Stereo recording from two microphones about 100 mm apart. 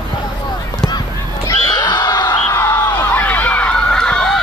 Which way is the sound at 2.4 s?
25° left (ahead or behind).